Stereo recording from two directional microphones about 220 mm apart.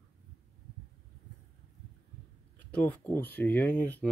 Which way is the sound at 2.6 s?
5° left (ahead or behind).